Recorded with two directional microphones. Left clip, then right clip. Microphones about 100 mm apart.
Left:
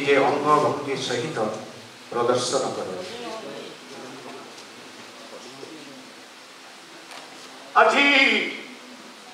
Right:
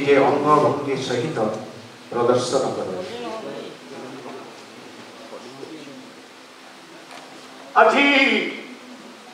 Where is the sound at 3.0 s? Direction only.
10° right (ahead or behind).